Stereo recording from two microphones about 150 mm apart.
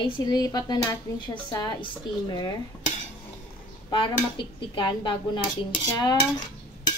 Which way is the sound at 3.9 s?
35° left (ahead or behind).